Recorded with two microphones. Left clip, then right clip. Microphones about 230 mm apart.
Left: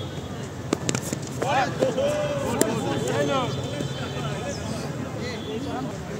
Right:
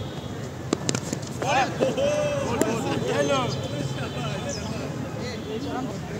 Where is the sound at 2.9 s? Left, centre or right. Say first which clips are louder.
Right 1 dB; right.